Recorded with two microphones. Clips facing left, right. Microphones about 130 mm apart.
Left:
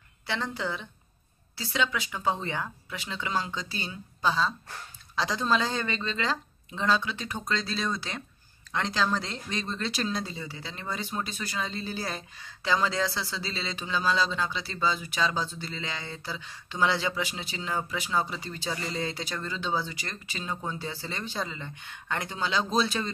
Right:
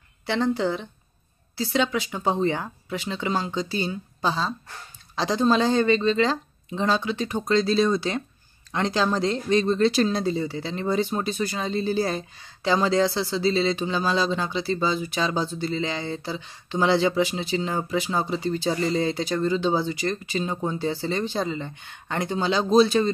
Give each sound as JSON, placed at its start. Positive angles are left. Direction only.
{"t": 0.3, "sound": "speech", "side_deg": -30}
{"t": 9.7, "sound": "speech", "side_deg": -35}